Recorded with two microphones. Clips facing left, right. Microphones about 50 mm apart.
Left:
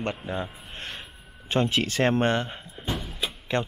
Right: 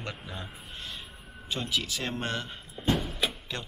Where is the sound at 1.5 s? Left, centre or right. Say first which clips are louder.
Left 8 dB; left.